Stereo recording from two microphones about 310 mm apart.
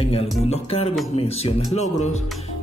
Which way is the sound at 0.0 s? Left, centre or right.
Centre.